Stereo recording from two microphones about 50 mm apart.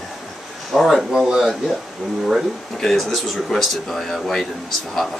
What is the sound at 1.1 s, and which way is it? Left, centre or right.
Speech, centre.